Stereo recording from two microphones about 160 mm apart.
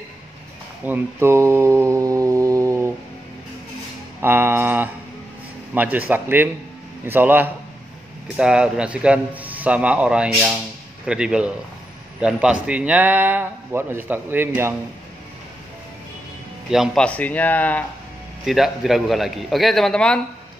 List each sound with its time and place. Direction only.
0.8 s mantra: 15° right (ahead or behind)
4.2 s music: 15° right (ahead or behind)
5.8 s a man's voice: 10° right (ahead or behind)
16.7 s speech: centre (ahead or behind)
18.4 s a man's voice: centre (ahead or behind)